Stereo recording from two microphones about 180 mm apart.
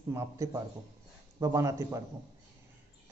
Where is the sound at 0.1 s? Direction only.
15° right (ahead or behind).